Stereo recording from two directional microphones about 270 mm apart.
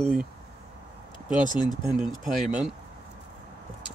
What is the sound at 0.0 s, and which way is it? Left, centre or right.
Speech, centre.